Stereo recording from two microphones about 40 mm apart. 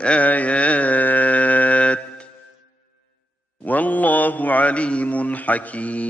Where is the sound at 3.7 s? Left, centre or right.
Left.